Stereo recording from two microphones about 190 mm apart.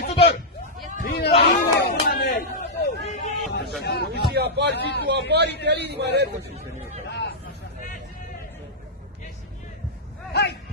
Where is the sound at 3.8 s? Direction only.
60° left (ahead or behind).